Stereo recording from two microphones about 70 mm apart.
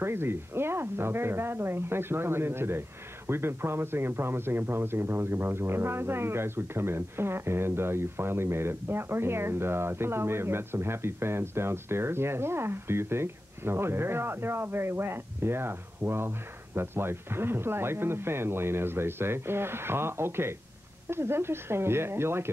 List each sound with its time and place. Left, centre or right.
0.0 s speech: right